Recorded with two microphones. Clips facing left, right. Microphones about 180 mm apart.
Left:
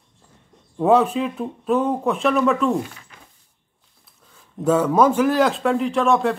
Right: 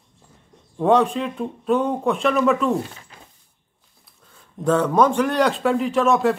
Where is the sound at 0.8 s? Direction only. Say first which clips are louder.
Left 1 dB; 5° left (ahead or behind).